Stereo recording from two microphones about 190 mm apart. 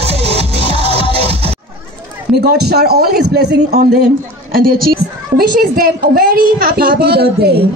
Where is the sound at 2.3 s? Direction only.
60° right (ahead or behind).